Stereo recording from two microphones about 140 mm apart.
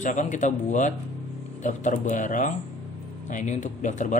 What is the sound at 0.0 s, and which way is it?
Speech, 60° left (ahead or behind).